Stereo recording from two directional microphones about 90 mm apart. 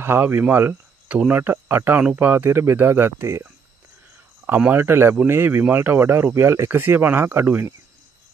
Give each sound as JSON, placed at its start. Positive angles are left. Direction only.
{"t": 0.0, "sound": "speech", "side_deg": -25}
{"t": 4.5, "sound": "speech", "side_deg": -20}